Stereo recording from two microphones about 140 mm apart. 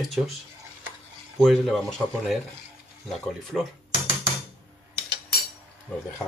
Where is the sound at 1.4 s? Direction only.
Centre (ahead or behind).